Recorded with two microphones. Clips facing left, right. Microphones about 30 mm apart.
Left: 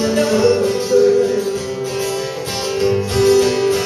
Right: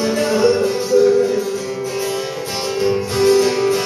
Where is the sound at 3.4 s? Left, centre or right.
Centre.